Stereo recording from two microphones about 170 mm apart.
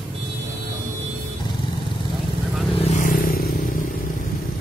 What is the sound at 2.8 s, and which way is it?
Vehicle, 50° left (ahead or behind).